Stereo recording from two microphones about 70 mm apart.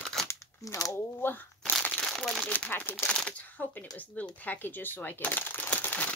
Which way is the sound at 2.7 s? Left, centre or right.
Left.